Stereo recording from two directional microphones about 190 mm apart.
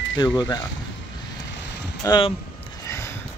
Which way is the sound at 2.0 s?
20° left (ahead or behind).